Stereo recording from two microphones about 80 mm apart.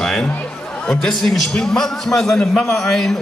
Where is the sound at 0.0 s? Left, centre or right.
Centre.